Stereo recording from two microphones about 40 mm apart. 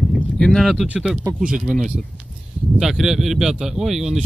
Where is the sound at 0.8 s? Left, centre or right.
Centre.